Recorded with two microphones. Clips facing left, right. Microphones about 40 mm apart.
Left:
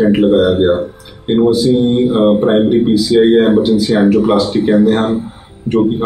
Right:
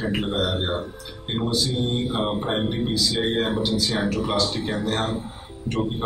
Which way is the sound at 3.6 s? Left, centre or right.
Centre.